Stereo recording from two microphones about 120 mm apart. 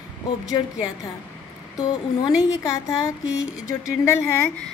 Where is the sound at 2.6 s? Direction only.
25° left (ahead or behind).